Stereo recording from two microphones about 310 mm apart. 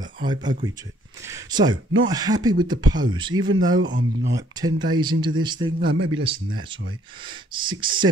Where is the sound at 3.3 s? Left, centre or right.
Right.